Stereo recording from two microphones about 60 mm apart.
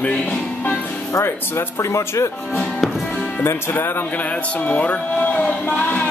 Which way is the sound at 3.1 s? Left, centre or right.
Left.